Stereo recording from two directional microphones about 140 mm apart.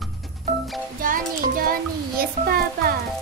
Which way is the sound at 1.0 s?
85° right.